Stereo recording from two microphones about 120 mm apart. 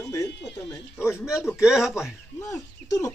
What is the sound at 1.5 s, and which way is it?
Speech, 5° right (ahead or behind).